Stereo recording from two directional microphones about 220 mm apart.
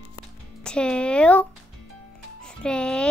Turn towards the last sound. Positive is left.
turn(degrees=5)  # may be behind; listen again after turning